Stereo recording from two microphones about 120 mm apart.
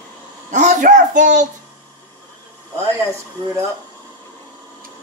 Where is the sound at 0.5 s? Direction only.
90° right.